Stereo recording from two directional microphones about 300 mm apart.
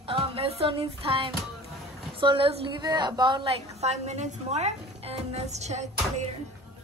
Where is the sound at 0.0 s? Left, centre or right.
Centre.